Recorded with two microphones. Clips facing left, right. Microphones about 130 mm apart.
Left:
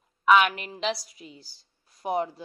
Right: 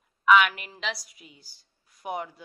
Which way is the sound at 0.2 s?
30° left (ahead or behind).